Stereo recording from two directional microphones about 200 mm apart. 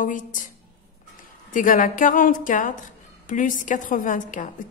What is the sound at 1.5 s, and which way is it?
A woman's voice, 40° left (ahead or behind).